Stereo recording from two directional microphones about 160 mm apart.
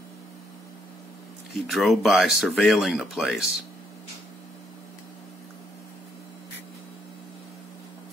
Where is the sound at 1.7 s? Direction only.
Centre (ahead or behind).